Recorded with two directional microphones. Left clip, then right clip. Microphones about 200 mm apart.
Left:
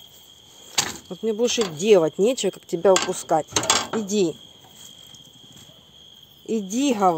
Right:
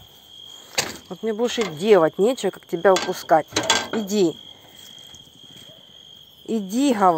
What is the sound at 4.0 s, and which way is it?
Cricket, 5° right (ahead or behind).